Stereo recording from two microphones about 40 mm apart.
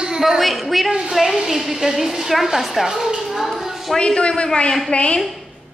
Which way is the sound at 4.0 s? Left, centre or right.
Left.